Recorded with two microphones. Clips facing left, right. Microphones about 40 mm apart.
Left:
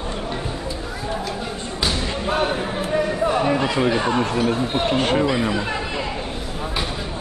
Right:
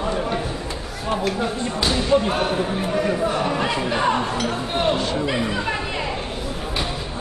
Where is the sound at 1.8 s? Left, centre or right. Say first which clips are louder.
Right 5 dB; centre.